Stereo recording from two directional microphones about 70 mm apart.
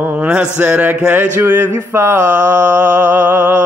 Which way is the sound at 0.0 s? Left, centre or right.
Right.